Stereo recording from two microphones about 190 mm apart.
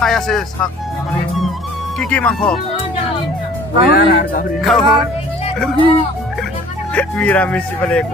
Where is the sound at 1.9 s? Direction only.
5° left (ahead or behind).